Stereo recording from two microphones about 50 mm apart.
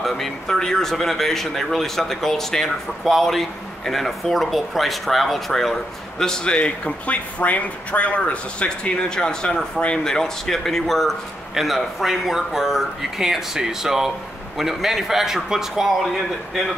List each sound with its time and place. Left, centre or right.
0.0 s a man's voice: centre